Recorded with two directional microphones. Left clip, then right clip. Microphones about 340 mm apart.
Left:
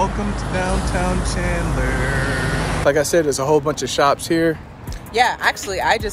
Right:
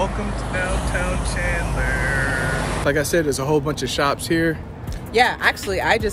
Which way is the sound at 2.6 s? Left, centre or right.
Centre.